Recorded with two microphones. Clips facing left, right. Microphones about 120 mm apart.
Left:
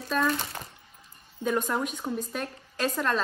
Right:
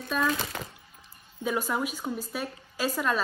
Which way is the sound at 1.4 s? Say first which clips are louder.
Left 1 dB; 5° right (ahead or behind).